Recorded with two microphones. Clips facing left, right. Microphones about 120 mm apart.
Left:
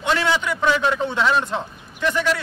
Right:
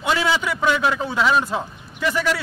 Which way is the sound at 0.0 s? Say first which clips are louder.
Even; 5° right (ahead or behind).